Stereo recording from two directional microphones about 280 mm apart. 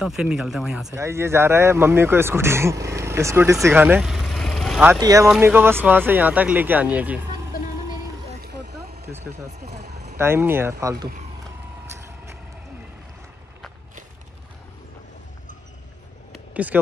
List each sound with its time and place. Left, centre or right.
0.0 s speech: centre
8.4 s vehicle: right
10.1 s speech: centre